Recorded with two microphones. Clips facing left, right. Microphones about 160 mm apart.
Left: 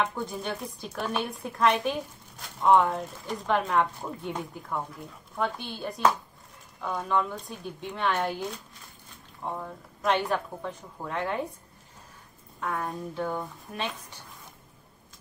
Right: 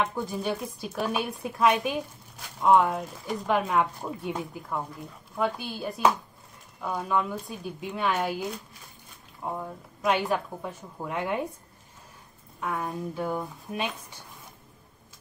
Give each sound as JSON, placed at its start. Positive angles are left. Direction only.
{"t": 0.0, "sound": "a woman's voice", "side_deg": -5}
{"t": 12.5, "sound": "a woman's voice", "side_deg": -5}